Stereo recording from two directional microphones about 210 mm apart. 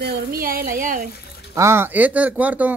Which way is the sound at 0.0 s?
45° right (ahead or behind).